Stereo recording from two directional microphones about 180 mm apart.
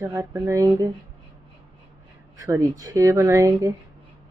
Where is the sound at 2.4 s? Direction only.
15° right (ahead or behind).